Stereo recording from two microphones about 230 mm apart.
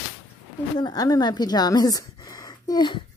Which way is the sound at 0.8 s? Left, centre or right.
Centre.